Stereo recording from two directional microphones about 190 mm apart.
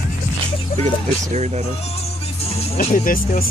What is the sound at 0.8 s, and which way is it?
Speech, 35° right (ahead or behind).